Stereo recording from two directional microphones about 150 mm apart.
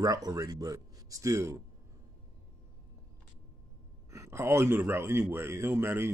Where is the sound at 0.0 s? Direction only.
25° right (ahead or behind).